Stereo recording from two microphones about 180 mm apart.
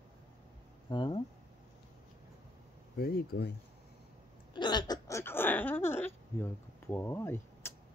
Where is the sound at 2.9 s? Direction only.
60° left (ahead or behind).